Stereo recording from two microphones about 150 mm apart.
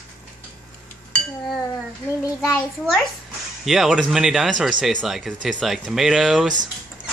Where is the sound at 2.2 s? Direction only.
25° left (ahead or behind).